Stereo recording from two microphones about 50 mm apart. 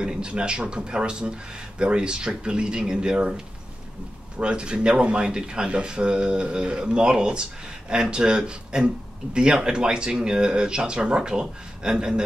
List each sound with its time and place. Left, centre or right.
0.0 s speech: centre